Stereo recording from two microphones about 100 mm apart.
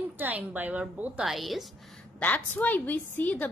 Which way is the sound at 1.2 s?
Centre (ahead or behind).